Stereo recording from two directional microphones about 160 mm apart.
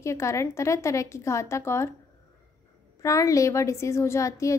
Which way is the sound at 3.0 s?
20° left (ahead or behind).